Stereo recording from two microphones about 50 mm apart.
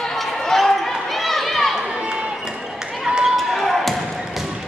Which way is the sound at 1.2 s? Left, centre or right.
Centre.